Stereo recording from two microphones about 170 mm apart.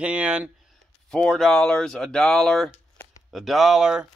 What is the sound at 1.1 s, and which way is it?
Speech, 5° left (ahead or behind).